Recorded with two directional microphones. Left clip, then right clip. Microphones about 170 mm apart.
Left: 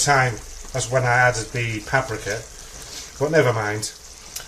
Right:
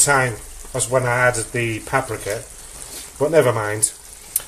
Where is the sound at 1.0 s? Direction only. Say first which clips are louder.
Even; 35° right (ahead or behind).